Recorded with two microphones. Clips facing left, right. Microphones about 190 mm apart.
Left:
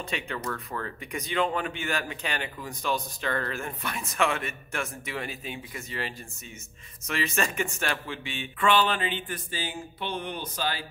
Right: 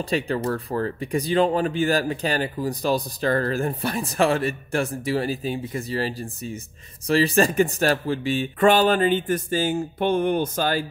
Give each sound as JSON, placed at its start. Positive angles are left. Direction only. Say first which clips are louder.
{"t": 0.0, "sound": "speech", "louder": "right 10 dB", "side_deg": -35}